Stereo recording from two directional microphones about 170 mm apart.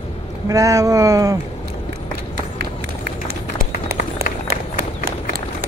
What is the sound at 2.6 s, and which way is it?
Run, 70° right (ahead or behind).